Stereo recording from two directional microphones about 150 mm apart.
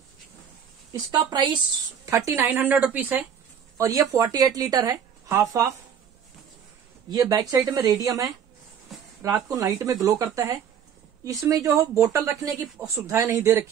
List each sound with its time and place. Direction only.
0.9 s speech: 30° right (ahead or behind)
2.0 s speech: 15° right (ahead or behind)
3.7 s speech: 20° right (ahead or behind)
7.1 s speech: 25° right (ahead or behind)